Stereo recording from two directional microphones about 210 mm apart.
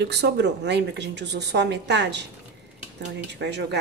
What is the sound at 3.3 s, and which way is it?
Speech, 55° right (ahead or behind).